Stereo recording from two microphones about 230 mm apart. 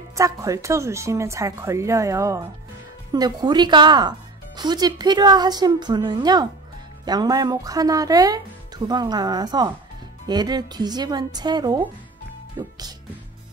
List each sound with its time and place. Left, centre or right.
0.1 s a woman's voice: centre